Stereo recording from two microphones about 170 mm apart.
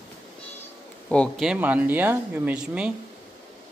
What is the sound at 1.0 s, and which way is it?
Speech, 5° left (ahead or behind).